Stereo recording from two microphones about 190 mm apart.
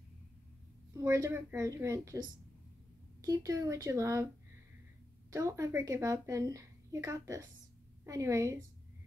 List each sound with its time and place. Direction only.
0.9 s a woman's voice: 15° right (ahead or behind)
5.3 s a woman's voice: 15° right (ahead or behind)